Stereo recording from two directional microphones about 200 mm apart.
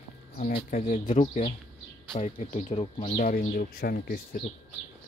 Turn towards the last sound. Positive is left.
turn(degrees=50)  # may be behind; listen again after turning